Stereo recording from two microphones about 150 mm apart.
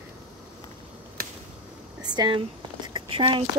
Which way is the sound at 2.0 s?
30° right (ahead or behind).